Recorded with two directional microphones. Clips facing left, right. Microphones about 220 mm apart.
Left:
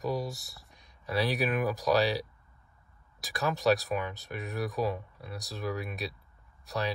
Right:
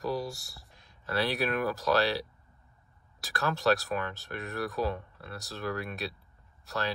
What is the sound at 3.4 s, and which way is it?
Speech, centre (ahead or behind).